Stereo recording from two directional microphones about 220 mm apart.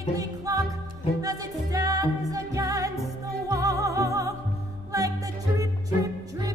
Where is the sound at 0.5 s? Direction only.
15° right (ahead or behind).